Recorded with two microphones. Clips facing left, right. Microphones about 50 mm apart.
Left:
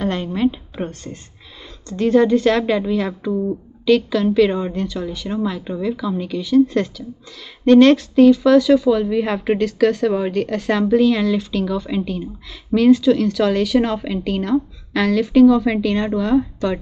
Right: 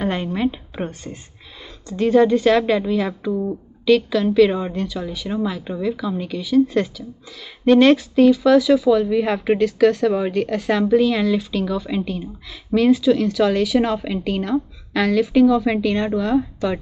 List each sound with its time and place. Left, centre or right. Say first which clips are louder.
0.0 s a woman's voice: left 2 dB; centre